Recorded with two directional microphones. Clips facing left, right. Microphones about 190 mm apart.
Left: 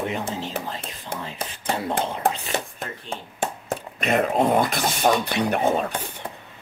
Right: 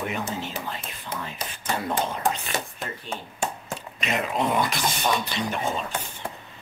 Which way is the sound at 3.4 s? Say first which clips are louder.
Left 4 dB; 55° left (ahead or behind).